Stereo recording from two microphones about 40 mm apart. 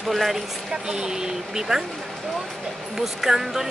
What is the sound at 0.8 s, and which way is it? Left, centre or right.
Speech, centre.